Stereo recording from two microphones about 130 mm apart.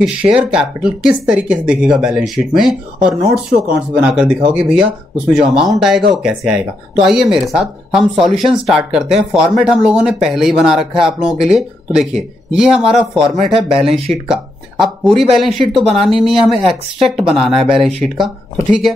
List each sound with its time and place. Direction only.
0.0 s speech: 5° right (ahead or behind)